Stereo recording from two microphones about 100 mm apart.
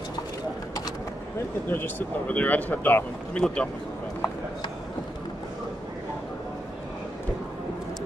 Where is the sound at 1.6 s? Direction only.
20° left (ahead or behind).